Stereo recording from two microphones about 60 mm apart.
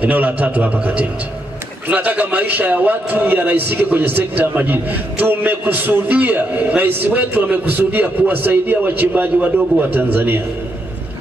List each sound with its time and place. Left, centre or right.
0.0 s a man's voice: right